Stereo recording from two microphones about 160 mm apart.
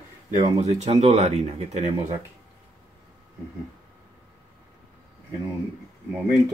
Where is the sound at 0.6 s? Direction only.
45° right (ahead or behind).